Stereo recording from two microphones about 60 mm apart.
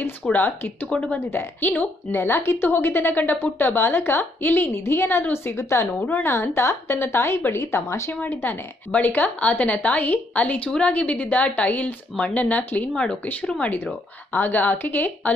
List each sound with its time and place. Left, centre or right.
0.2 s speech: centre
1.1 s a woman's voice: left
5.6 s a woman's voice: left
5.9 s a woman's voice: left
6.2 s a woman's voice: left
8.2 s a woman's voice: left
12.9 s speech: centre
14.3 s a woman's voice: left